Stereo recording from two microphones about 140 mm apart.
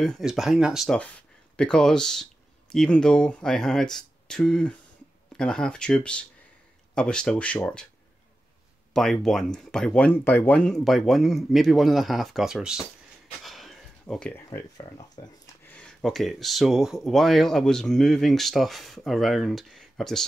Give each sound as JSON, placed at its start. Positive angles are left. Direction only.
{"t": 0.0, "sound": "speech", "side_deg": 0}
{"t": 8.9, "sound": "speech", "side_deg": 5}
{"t": 13.4, "sound": "a sound", "side_deg": 0}
{"t": 14.8, "sound": "speech", "side_deg": 30}
{"t": 15.6, "sound": "speech", "side_deg": 10}